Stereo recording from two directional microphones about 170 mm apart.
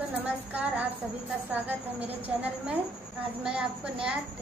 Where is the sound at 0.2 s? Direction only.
10° right (ahead or behind).